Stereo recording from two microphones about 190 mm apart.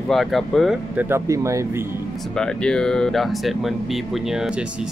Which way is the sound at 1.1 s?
15° right (ahead or behind).